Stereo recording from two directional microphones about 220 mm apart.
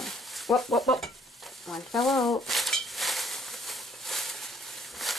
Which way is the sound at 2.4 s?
Centre (ahead or behind).